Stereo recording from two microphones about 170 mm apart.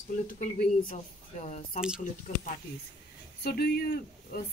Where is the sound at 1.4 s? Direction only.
40° left (ahead or behind).